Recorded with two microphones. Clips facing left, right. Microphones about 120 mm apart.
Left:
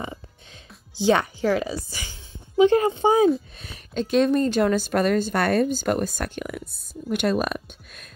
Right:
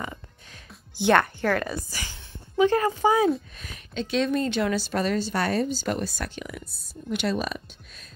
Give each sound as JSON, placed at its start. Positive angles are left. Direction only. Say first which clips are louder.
{"t": 1.1, "sound": "speech", "louder": "right 1 dB", "side_deg": 10}
{"t": 2.5, "sound": "a woman's voice", "louder": "left 4 dB", "side_deg": 25}
{"t": 3.5, "sound": "a sound", "louder": "left 1 dB", "side_deg": 35}
{"t": 3.9, "sound": "a woman's voice", "louder": "left 5 dB", "side_deg": 45}